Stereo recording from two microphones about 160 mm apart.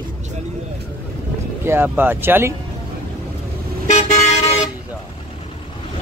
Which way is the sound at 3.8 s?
45° left (ahead or behind).